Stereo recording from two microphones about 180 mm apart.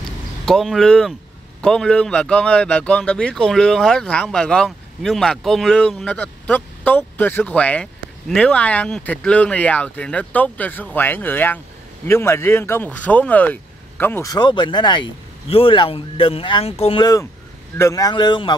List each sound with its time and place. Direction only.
0.5 s speech: centre (ahead or behind); by 18.6 s 25° left (ahead or behind)